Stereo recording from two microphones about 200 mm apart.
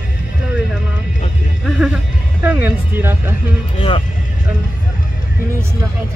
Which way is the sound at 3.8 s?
25° left (ahead or behind).